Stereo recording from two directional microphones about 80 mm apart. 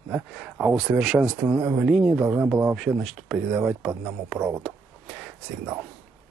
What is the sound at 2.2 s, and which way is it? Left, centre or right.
Speech, right.